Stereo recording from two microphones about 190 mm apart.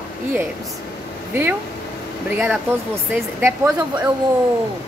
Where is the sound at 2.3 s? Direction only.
10° right (ahead or behind).